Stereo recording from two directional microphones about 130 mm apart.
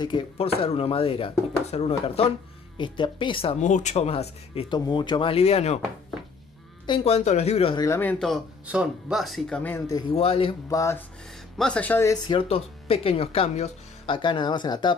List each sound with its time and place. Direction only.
0.4 s speech: 50° left (ahead or behind)
2.8 s speech: 40° left (ahead or behind)
3.5 s speech: 65° left (ahead or behind)
4.6 s speech: 35° left (ahead or behind); by 5.8 s 55° left (ahead or behind)
7.1 s speech: 55° left (ahead or behind)
7.7 s speech: 25° left (ahead or behind)
8.0 s speech: 10° left (ahead or behind)
8.6 s speech: 5° right (ahead or behind)
9.6 s speech: 15° left (ahead or behind)
10.1 s speech: 50° left (ahead or behind)
10.7 s speech: 25° left (ahead or behind)
11.5 s speech: 10° left (ahead or behind)
12.3 s speech: 45° left (ahead or behind)